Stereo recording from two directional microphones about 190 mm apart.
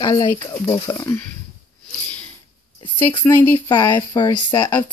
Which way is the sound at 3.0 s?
10° left (ahead or behind).